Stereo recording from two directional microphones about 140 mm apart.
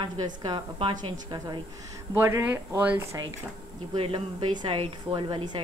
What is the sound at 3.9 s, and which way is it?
A woman's voice, 35° right (ahead or behind).